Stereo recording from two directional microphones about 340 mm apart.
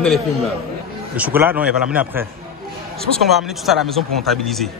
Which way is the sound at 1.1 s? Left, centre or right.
Centre.